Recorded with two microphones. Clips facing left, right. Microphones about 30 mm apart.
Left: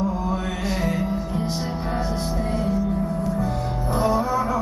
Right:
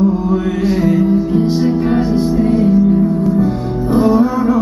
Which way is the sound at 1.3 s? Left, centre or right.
Centre.